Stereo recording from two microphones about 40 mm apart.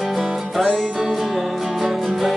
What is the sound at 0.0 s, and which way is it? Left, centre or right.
Music, centre.